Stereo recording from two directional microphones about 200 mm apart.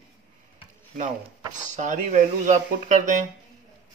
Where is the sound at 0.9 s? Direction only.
35° right (ahead or behind).